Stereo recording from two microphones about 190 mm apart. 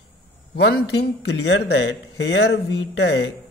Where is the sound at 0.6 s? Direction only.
65° left (ahead or behind).